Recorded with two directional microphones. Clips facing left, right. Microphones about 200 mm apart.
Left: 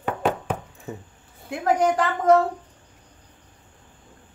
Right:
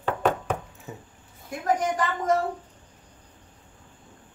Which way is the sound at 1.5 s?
65° left (ahead or behind).